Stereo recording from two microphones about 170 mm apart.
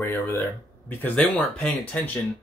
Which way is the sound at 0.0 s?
15° left (ahead or behind).